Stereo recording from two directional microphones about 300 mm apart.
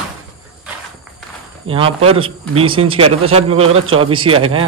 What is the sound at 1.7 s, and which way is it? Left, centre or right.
Speech, centre.